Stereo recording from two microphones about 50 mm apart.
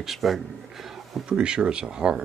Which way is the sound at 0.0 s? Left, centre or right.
Centre.